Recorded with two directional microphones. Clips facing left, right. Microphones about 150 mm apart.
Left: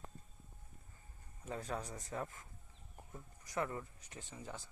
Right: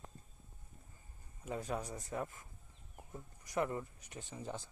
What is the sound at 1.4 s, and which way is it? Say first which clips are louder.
Speech: right 2 dB; 10° right (ahead or behind).